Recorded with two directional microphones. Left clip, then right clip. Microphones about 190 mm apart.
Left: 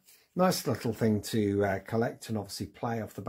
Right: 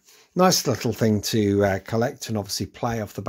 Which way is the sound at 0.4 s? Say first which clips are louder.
Right 8 dB; 35° right (ahead or behind).